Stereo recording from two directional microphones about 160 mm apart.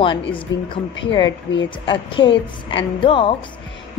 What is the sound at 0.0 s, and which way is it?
Speech, 30° left (ahead or behind).